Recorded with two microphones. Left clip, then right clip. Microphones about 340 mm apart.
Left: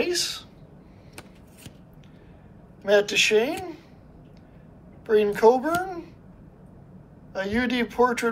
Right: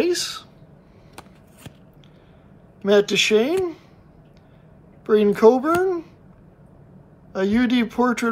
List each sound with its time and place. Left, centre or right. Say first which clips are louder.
0.0 s a child's voice: right 4 dB; centre
2.8 s a child's voice: right 3 dB; centre
5.0 s a child's voice: right 3 dB; centre
7.3 s a child's voice: right 4 dB; centre